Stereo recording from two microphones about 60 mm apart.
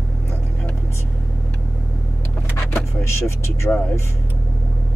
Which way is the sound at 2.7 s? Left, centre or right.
Left.